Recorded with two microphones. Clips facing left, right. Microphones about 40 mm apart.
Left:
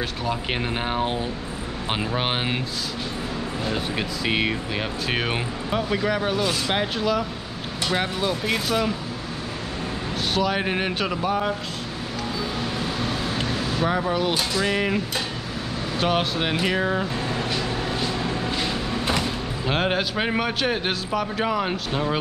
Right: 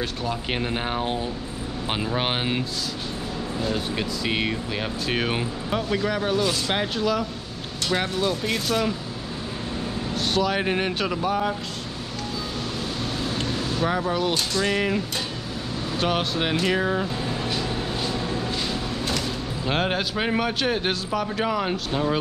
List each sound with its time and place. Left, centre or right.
0.0 s speech: centre
3.6 s speech: centre
10.1 s speech: centre
12.7 s vehicle: centre
16.0 s speech: centre
18.6 s a sound: left
19.7 s speech: centre